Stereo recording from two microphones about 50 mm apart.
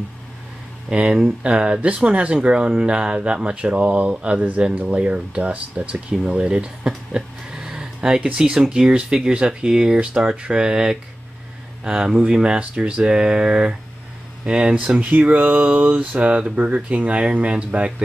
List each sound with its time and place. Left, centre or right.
0.8 s speech: centre